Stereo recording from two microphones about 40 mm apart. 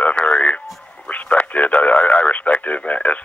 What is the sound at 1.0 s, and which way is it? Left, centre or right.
Speech, left.